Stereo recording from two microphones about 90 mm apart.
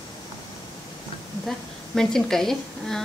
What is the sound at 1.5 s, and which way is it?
A woman's voice, 5° left (ahead or behind).